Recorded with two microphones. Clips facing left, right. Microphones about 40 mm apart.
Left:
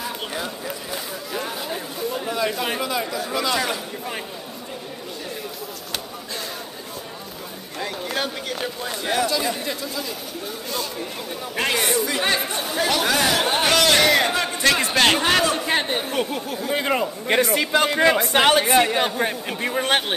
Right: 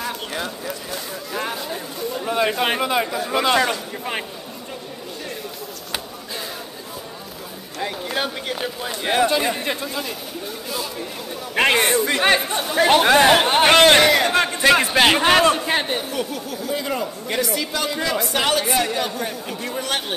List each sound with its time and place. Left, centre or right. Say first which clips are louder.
0.0 s a sound: right 1 dB; centre
1.6 s chatter: even; centre
2.6 s speech: right 4 dB; right
7.8 s speech: right 2 dB; centre
9.0 s speech: right 4 dB; right
10.7 s speech: even; centre
11.5 s speech: right 5 dB; right
12.7 s speech: right 7 dB; right
14.0 s a man's voice: right 1 dB; centre
14.6 s a man's voice: right 3 dB; centre
15.5 s a man's voice: right 1 dB; centre
16.0 s speech: left 2 dB; left